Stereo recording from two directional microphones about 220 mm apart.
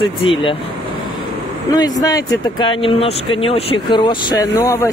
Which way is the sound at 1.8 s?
15° left (ahead or behind).